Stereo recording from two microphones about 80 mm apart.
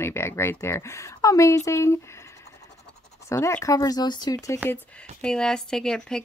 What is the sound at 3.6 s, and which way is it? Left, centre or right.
Speech, left.